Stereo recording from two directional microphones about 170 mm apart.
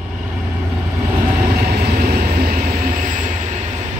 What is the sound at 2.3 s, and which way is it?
Vehicle, 60° right (ahead or behind).